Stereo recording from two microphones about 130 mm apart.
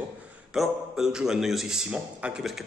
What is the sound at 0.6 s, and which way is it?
A man's voice, 5° right (ahead or behind).